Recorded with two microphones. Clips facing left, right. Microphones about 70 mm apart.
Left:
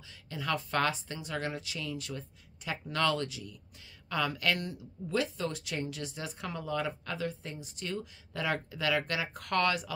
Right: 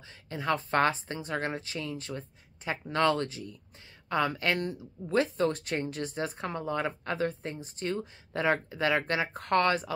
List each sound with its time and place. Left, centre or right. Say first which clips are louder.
0.3 s speech: right 4 dB; right